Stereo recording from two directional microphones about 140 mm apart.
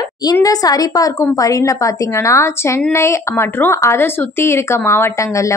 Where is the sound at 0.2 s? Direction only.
25° left (ahead or behind).